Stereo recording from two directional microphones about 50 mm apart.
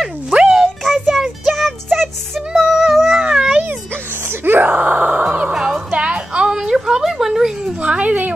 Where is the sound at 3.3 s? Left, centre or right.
Centre.